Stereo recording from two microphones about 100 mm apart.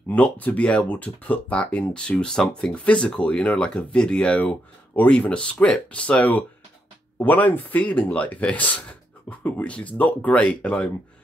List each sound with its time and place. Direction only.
0.1 s speech: 15° left (ahead or behind)